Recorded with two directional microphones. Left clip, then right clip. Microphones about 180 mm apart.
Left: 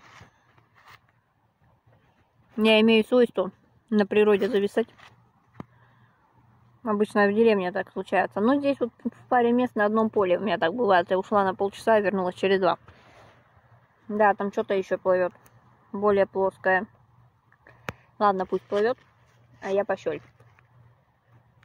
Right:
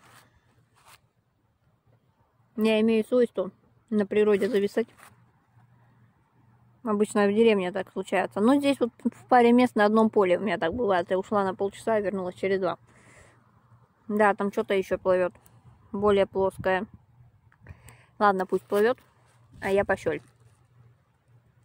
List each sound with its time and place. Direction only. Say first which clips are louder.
2.5 s speech: left 4 dB; 5° right (ahead or behind)
6.8 s speech: left 2 dB; 10° right (ahead or behind)
14.0 s speech: left 1 dB; 25° right (ahead or behind)
18.1 s speech: even; 15° right (ahead or behind)
18.7 s speech: right 2 dB; 25° right (ahead or behind)